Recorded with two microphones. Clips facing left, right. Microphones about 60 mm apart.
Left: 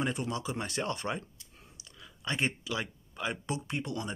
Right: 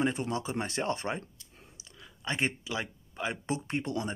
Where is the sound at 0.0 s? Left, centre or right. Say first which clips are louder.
Right 3 dB; right.